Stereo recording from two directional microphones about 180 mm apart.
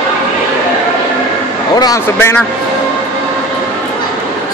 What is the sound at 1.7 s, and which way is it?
Speech, 15° left (ahead or behind).